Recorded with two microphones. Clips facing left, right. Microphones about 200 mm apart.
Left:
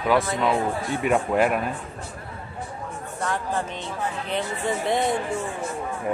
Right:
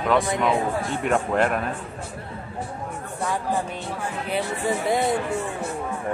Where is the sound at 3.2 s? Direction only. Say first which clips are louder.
Right 1 dB; 10° right (ahead or behind).